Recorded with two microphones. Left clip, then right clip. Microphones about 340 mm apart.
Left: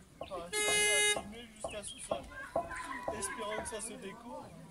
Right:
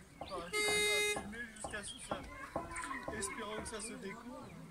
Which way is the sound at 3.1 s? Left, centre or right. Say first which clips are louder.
Left 4 dB; left.